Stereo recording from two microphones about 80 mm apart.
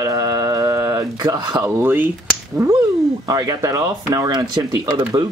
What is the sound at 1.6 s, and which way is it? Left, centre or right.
Speech, right.